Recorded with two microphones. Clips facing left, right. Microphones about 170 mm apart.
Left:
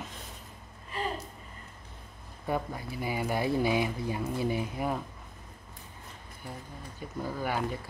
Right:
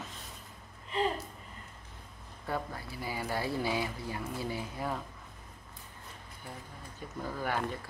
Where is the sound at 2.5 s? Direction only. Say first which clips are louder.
Left 4 dB; 20° left (ahead or behind).